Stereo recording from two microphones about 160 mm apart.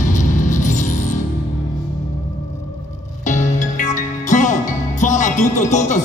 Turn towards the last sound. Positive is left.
turn(degrees=50)  # may be behind; listen again after turning